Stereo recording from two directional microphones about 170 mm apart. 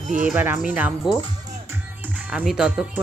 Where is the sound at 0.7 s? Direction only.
10° right (ahead or behind).